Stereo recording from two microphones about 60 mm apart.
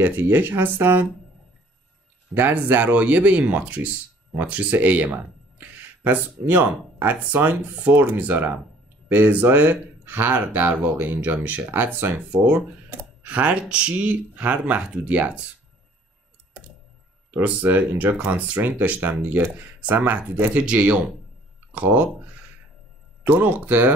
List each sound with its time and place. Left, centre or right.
0.0 s speech: right
2.3 s speech: right
17.3 s speech: right